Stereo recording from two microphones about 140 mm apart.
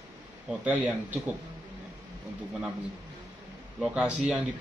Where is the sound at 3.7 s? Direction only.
5° right (ahead or behind).